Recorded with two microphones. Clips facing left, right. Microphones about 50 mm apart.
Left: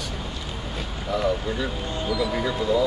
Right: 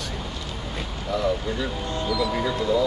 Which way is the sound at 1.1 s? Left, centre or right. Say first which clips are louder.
Even; centre.